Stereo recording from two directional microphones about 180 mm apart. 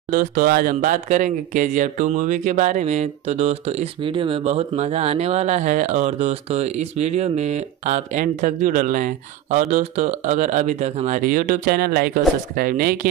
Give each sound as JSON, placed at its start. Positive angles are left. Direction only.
{"t": 0.1, "sound": "speech", "side_deg": -45}